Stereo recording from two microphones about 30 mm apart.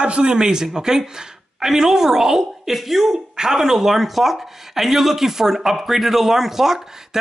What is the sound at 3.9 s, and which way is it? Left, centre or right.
Speech, centre.